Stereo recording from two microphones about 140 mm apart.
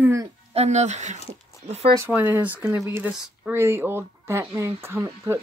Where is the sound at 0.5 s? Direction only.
55° right (ahead or behind).